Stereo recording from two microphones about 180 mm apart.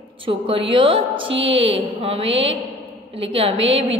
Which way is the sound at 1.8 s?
30° right (ahead or behind).